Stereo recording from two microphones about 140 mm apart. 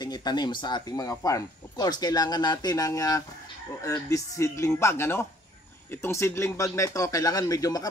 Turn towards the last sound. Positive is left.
turn(degrees=25)  # may be behind; listen again after turning